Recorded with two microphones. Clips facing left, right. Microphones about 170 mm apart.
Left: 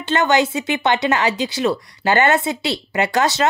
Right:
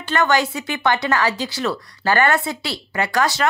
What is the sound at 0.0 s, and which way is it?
Speech, 20° left (ahead or behind).